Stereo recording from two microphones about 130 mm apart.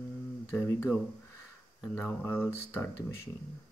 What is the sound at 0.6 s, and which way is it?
Speech, 20° left (ahead or behind).